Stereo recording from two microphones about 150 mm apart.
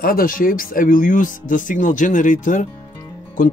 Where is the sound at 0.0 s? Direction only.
70° left (ahead or behind).